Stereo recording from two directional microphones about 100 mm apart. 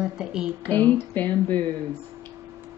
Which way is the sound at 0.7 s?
20° left (ahead or behind).